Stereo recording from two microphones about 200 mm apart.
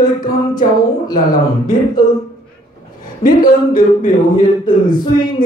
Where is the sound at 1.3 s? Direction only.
20° left (ahead or behind).